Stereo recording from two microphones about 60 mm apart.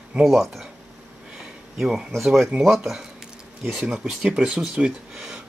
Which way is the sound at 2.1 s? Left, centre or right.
Centre.